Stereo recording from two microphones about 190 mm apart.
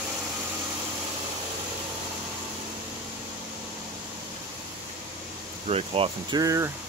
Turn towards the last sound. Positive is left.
turn(degrees=-15)  # may be behind; listen again after turning